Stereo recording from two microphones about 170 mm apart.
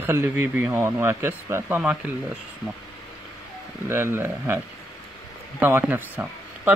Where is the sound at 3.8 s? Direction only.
15° right (ahead or behind).